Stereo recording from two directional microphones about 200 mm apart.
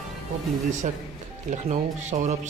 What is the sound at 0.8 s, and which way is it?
Speech, 40° right (ahead or behind).